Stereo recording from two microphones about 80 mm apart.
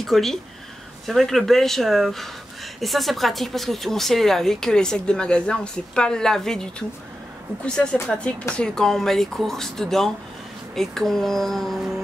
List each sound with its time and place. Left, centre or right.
0.0 s speech: centre